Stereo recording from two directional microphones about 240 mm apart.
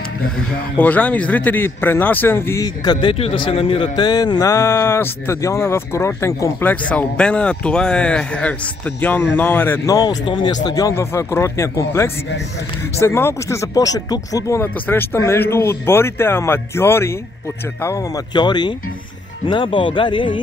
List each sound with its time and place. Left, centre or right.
0.7 s speech: centre